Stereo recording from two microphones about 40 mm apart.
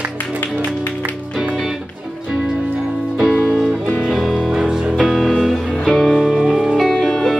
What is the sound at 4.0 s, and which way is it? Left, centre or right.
Music, centre.